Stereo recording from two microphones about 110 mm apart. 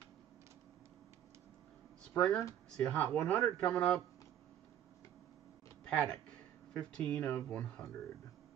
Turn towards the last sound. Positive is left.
turn(degrees=10)  # may be behind; listen again after turning